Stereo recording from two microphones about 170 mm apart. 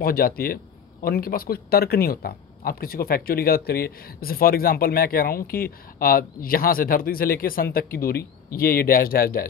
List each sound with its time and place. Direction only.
0.0 s speech: 60° left (ahead or behind)